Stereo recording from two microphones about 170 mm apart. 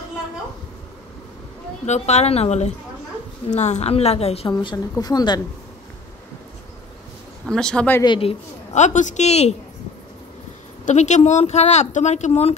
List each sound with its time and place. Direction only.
1.9 s a woman's voice: 40° left (ahead or behind); by 5.4 s 25° left (ahead or behind)
7.4 s speech: 5° left (ahead or behind)
8.0 s a woman's voice: 30° left (ahead or behind)
10.9 s a woman's voice: 45° left (ahead or behind)